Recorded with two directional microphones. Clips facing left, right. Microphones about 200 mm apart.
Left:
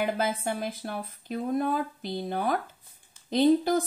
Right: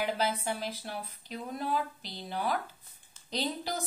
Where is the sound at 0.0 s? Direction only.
50° left (ahead or behind).